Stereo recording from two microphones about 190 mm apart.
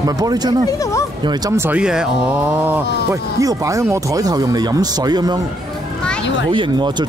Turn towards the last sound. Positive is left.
turn(degrees=-25)  # may be behind; listen again after turning